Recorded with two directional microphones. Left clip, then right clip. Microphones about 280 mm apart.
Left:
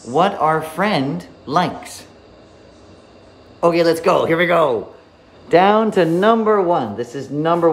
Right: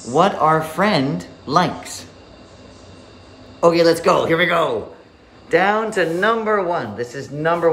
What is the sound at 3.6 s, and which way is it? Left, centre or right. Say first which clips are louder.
A woman's voice: right 1 dB; centre.